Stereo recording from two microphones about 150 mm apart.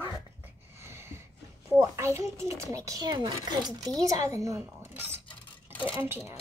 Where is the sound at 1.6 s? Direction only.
15° right (ahead or behind).